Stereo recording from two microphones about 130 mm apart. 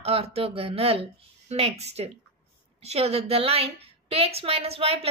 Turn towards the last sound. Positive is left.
turn(degrees=-50)  # may be behind; listen again after turning